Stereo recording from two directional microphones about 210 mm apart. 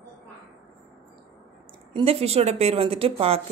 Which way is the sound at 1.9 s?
25° right (ahead or behind).